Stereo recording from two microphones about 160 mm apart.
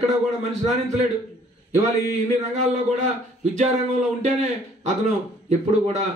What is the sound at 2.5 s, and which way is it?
A man's voice, 50° right (ahead or behind).